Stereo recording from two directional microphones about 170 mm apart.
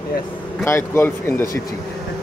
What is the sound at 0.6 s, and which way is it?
Speech, 15° left (ahead or behind).